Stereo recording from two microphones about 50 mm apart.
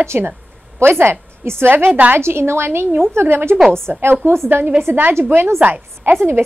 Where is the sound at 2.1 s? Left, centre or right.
Right.